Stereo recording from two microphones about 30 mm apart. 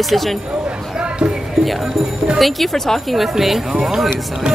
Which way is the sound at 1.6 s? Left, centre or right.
Centre.